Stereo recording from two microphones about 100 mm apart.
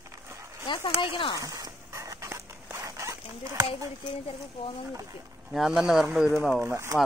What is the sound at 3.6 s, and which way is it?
Speech, 70° left (ahead or behind).